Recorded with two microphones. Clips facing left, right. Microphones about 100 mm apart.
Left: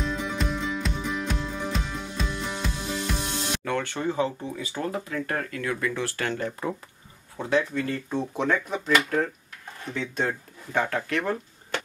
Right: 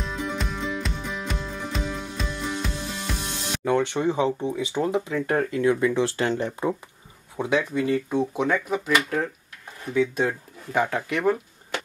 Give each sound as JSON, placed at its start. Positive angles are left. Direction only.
{"t": 0.0, "sound": "music", "side_deg": 0}
{"t": 3.6, "sound": "speech", "side_deg": -15}